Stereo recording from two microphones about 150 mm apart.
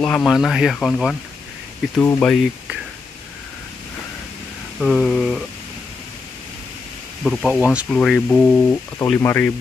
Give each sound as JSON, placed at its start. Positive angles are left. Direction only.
{"t": 0.0, "sound": "speech", "side_deg": 5}
{"t": 2.0, "sound": "speech", "side_deg": 15}
{"t": 4.7, "sound": "speech", "side_deg": 5}
{"t": 7.2, "sound": "speech", "side_deg": 0}